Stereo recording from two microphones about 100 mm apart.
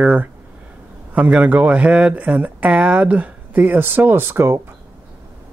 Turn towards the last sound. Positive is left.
turn(degrees=-25)  # may be behind; listen again after turning